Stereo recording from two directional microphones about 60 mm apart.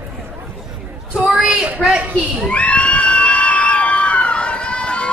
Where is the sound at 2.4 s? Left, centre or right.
Centre.